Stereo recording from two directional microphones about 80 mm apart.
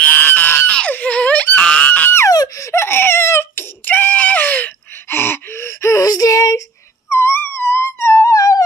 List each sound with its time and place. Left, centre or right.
0.0 s a sound: left
2.2 s crying: left
7.1 s wail: left
8.3 s music: left